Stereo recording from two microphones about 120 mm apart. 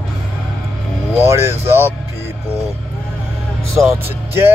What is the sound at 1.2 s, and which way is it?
Speech, 20° right (ahead or behind).